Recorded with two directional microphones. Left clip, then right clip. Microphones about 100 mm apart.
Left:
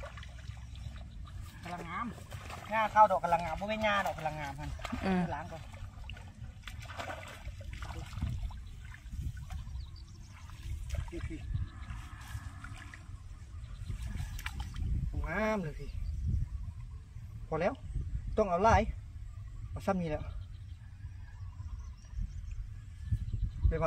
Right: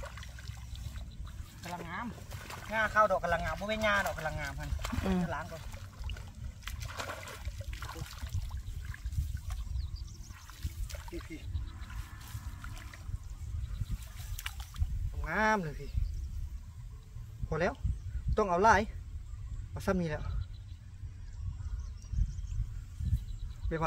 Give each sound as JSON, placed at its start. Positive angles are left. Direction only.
{"t": 0.0, "sound": "trickle", "side_deg": -15}
{"t": 1.6, "sound": "a sound", "side_deg": -15}
{"t": 2.6, "sound": "speech", "side_deg": -25}
{"t": 6.6, "sound": "splash", "side_deg": -25}
{"t": 10.9, "sound": "a sound", "side_deg": -5}
{"t": 14.3, "sound": "boat", "side_deg": 15}
{"t": 15.2, "sound": "speech", "side_deg": -35}
{"t": 17.5, "sound": "a man's voice", "side_deg": -30}